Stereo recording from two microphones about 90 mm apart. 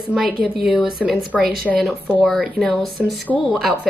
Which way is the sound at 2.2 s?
Centre (ahead or behind).